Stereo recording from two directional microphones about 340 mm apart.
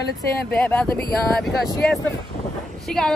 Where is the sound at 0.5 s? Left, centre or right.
Centre.